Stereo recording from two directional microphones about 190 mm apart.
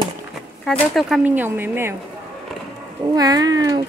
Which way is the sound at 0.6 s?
Centre (ahead or behind).